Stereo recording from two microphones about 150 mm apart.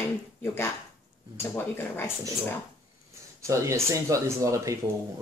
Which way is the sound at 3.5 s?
20° right (ahead or behind).